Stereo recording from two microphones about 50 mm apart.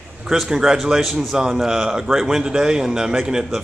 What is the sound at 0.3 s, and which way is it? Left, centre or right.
A man's voice, centre.